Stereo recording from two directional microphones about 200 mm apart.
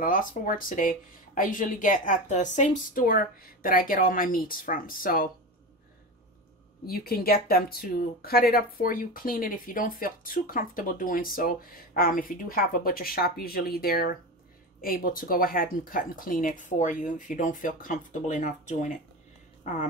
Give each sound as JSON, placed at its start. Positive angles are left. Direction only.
{"t": 0.0, "sound": "speech", "side_deg": 40}
{"t": 6.9, "sound": "speech", "side_deg": 50}